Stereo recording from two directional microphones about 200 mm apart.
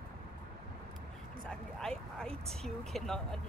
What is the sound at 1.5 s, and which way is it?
Speech, 5° left (ahead or behind).